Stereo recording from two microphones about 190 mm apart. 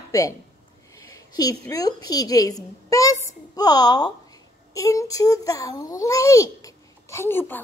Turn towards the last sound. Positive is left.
turn(degrees=10)  # may be behind; listen again after turning